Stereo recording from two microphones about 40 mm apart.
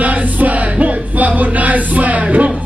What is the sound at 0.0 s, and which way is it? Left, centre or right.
Music, right.